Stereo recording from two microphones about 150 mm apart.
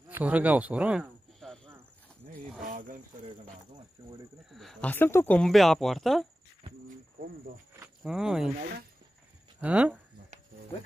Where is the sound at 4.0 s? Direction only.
25° right (ahead or behind).